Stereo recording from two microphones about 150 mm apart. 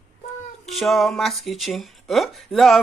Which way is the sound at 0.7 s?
Centre (ahead or behind).